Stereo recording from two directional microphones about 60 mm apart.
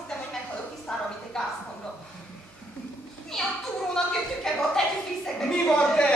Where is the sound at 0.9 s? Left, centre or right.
Centre.